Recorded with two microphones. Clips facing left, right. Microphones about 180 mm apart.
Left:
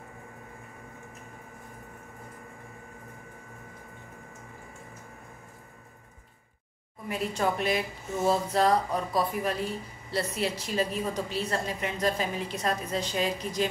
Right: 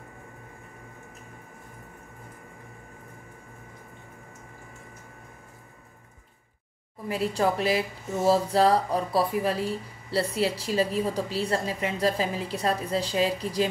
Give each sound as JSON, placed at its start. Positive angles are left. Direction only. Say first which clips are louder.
{"t": 7.1, "sound": "a woman's voice", "louder": "right 3 dB", "side_deg": -30}